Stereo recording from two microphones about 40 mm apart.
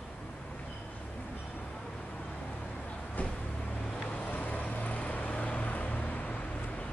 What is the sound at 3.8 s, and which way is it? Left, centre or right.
Vehicle, left.